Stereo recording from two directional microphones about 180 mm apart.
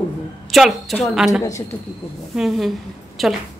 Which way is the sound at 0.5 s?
Centre (ahead or behind).